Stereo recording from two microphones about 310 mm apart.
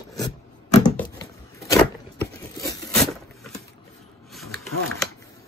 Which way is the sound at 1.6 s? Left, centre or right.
Centre.